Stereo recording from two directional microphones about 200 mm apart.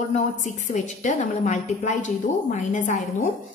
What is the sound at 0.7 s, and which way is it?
A woman's voice, 40° left (ahead or behind).